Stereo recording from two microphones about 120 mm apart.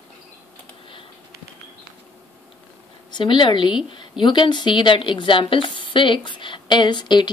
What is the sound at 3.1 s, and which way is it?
A woman's voice, 40° left (ahead or behind).